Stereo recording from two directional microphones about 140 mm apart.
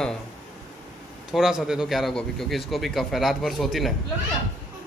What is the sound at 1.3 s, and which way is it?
A man's voice, 5° right (ahead or behind).